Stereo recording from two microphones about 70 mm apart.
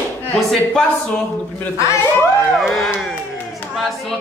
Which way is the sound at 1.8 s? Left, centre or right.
Left.